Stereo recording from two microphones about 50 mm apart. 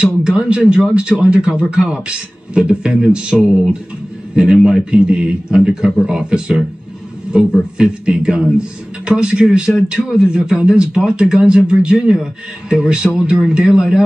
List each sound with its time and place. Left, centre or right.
0.0 s speech: right
4.6 s speech: centre
7.7 s speech: right